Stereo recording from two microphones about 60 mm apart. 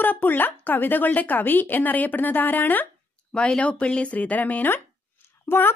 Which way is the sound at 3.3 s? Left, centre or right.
Centre.